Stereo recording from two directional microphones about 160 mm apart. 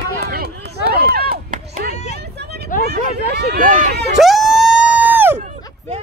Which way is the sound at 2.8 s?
90° right.